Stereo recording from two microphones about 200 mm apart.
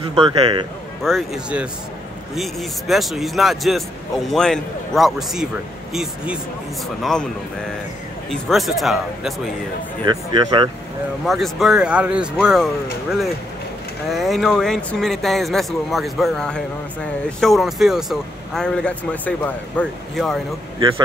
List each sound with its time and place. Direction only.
0.0 s speech: 30° right (ahead or behind)
1.0 s speech: centre (ahead or behind)
8.3 s speech: centre (ahead or behind)
10.0 s speech: 20° right (ahead or behind)
11.2 s speech: centre (ahead or behind)
14.1 s speech: centre (ahead or behind)